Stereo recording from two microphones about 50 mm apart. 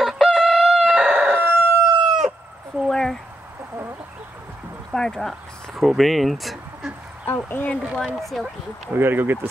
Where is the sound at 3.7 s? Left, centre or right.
Right.